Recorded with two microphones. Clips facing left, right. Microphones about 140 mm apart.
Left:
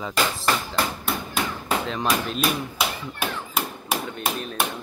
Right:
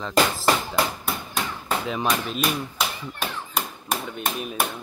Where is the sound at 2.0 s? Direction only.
Centre (ahead or behind).